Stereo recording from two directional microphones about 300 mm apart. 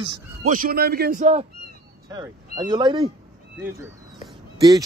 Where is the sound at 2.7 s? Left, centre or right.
Centre.